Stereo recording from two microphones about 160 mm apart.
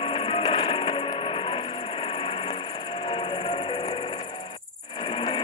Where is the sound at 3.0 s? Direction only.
30° left (ahead or behind).